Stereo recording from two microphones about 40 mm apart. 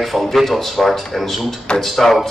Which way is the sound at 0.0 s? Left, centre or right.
Centre.